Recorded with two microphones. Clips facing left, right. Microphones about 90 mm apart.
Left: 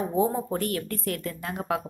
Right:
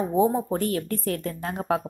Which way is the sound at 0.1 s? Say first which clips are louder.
Right 4 dB; 20° right (ahead or behind).